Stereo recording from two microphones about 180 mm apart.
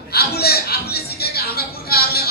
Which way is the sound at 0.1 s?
60° left (ahead or behind).